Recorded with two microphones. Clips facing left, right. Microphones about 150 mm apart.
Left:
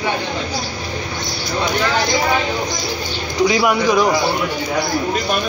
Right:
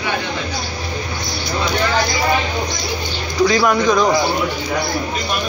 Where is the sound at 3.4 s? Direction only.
15° left (ahead or behind).